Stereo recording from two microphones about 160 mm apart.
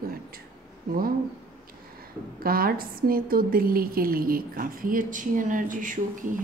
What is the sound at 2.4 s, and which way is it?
A woman's voice, 65° right (ahead or behind).